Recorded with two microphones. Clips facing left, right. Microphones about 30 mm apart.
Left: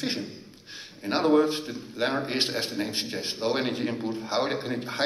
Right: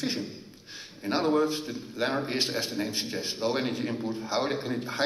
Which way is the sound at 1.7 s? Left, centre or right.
Left.